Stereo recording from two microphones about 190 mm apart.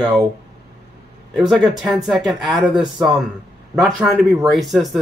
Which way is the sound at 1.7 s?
Centre (ahead or behind).